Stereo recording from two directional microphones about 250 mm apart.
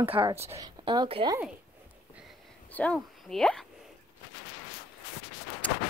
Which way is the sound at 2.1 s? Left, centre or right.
Centre.